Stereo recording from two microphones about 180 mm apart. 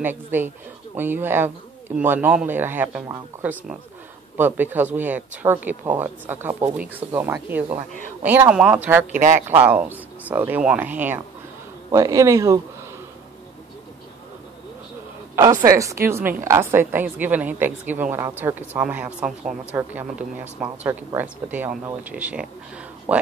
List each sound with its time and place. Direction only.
0.0 s a woman's voice: 10° right (ahead or behind)
9.1 s speech: 45° right (ahead or behind)
9.6 s a woman's voice: 10° right (ahead or behind)
15.3 s a woman's voice: 15° right (ahead or behind)